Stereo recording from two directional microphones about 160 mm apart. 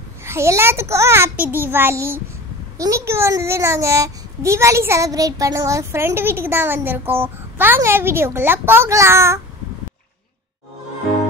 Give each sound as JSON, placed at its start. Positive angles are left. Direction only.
{"t": 0.2, "sound": "a child's voice", "side_deg": -15}